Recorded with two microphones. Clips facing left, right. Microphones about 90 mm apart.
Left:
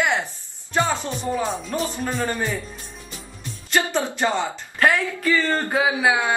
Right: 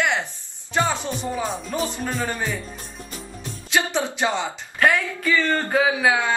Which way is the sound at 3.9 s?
15° right (ahead or behind).